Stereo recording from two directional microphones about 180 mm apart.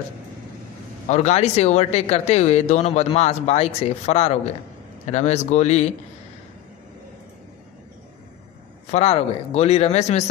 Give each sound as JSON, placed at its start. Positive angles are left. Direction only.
{"t": 1.0, "sound": "speech", "side_deg": 40}
{"t": 8.9, "sound": "speech", "side_deg": 35}